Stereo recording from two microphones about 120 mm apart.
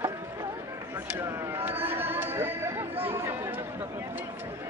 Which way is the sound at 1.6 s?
15° right (ahead or behind).